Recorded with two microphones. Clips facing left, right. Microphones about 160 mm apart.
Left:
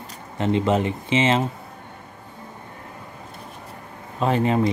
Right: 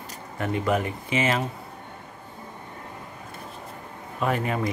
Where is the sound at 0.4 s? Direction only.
25° left (ahead or behind).